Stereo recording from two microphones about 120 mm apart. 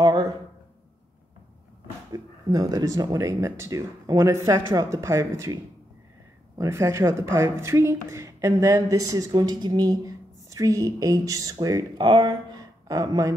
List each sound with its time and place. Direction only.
0.0 s a sound: 35° right (ahead or behind)
2.1 s speech: 30° right (ahead or behind)
6.6 s speech: 25° right (ahead or behind)
12.0 s speech: 40° right (ahead or behind)